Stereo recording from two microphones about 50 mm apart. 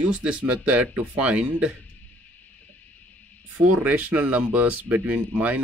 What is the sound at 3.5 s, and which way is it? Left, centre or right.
Speech, right.